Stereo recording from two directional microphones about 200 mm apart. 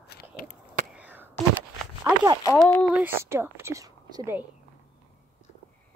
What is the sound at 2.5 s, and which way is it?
Speech, 5° left (ahead or behind).